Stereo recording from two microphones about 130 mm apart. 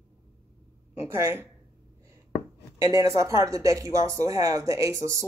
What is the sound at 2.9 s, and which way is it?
Speech, 25° right (ahead or behind).